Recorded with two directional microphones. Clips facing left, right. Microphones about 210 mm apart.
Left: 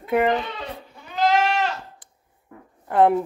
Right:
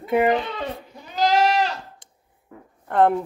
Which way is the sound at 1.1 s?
35° right (ahead or behind).